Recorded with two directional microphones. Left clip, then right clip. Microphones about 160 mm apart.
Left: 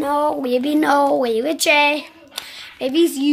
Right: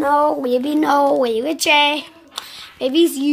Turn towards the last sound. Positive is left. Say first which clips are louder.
# right 1 dB
turn(degrees=0)  # may be behind; listen again after turning